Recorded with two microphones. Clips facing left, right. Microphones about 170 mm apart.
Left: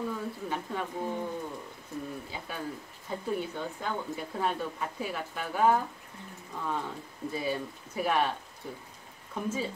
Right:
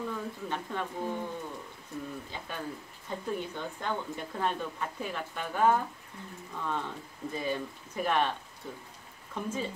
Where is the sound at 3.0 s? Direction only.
10° left (ahead or behind).